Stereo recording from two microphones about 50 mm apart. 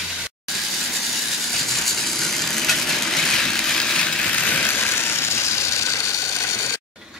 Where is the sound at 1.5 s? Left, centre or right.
Centre; by 6.5 s left.